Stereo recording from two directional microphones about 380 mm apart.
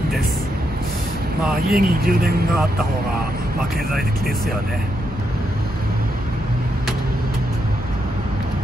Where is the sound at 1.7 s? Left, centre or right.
Right.